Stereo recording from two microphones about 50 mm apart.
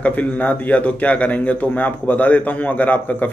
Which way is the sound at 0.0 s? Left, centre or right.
Left.